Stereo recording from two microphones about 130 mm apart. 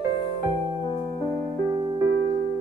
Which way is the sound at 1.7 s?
35° right (ahead or behind).